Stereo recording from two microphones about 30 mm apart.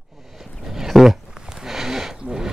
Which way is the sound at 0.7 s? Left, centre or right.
Centre.